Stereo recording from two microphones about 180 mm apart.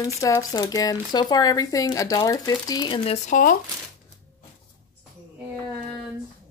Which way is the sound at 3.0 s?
45° left (ahead or behind).